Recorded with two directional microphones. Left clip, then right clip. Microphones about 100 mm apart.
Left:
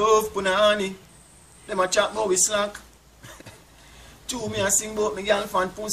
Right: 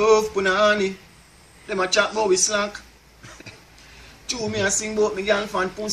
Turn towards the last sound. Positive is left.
turn(degrees=20)  # may be behind; listen again after turning